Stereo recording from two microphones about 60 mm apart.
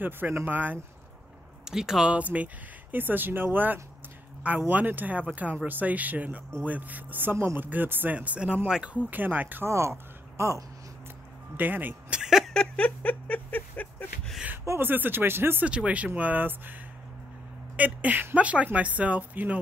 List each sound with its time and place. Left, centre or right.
0.5 s speech: right
1.6 s speech: centre
2.0 s speech: right
8.9 s speech: right
9.7 s speech: right
11.5 s speech: right
12.1 s a sound: centre
12.7 s a sound: left
14.8 s speech: right
15.6 s speech: right
17.7 s speech: right